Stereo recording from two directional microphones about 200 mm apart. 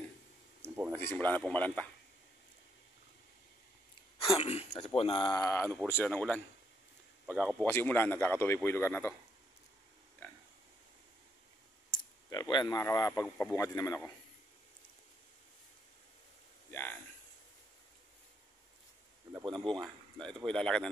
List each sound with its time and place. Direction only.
0.9 s speech: 10° left (ahead or behind)
4.4 s a man's voice: 30° left (ahead or behind); by 6.4 s 5° left (ahead or behind)
7.2 s speech: 10° right (ahead or behind)
7.6 s speech: 10° left (ahead or behind)
11.9 s speech: 20° left (ahead or behind)
19.4 s speech: 25° right (ahead or behind)
19.8 s a man's voice: centre (ahead or behind)